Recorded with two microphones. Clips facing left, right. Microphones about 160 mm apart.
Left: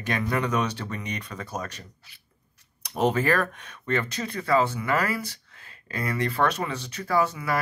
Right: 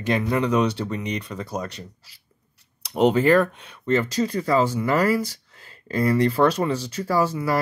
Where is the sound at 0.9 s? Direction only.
30° right (ahead or behind).